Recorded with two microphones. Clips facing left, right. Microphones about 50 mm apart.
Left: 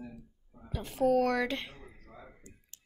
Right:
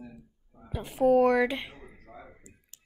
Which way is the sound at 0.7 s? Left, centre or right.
Centre.